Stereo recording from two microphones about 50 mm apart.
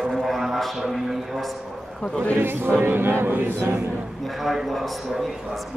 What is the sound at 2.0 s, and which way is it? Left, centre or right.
Speech, left.